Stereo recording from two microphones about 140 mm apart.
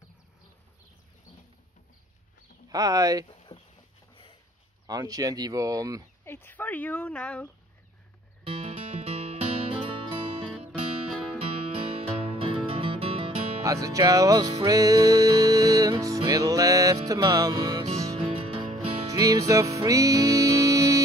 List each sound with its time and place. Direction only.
2.7 s speech: 25° right (ahead or behind)
3.3 s a sound: 40° left (ahead or behind)
4.1 s sniff: 40° left (ahead or behind)
4.8 s speech: 25° right (ahead or behind)
6.2 s speech: 15° left (ahead or behind)
8.5 s music: 45° right (ahead or behind)
10.7 s music: centre (ahead or behind)
11.3 s music: 45° right (ahead or behind)
13.6 s music: 25° right (ahead or behind)
18.3 s music: 40° right (ahead or behind)
19.0 s music: 25° right (ahead or behind)